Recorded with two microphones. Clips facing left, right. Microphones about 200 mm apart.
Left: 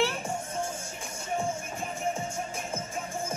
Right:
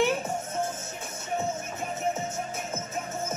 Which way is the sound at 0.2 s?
10° left (ahead or behind).